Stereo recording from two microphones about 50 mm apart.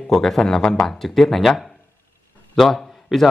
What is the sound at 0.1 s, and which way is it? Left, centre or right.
Speech, centre.